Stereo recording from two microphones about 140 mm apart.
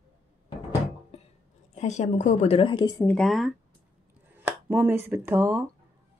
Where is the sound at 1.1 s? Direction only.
50° left (ahead or behind).